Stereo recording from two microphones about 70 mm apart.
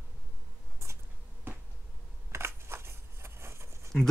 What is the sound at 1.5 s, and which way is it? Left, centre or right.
Finger snapping, right.